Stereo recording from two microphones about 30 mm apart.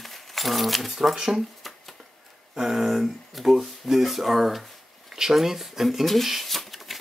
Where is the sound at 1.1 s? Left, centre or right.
Right.